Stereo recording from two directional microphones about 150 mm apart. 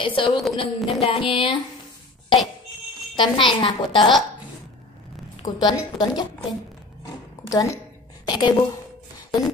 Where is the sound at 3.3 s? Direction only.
30° left (ahead or behind).